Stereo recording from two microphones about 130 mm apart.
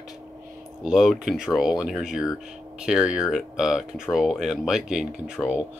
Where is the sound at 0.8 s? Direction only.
5° right (ahead or behind).